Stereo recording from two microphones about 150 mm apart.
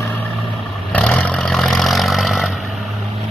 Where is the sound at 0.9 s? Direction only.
10° left (ahead or behind).